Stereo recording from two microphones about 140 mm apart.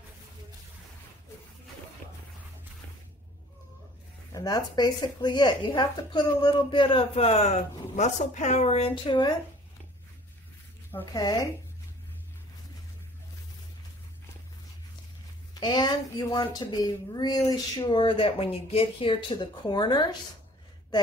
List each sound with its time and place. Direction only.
4.3 s speech: 25° left (ahead or behind)
15.5 s speech: 30° left (ahead or behind)